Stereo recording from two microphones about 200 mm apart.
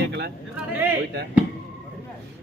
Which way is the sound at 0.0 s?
55° right (ahead or behind).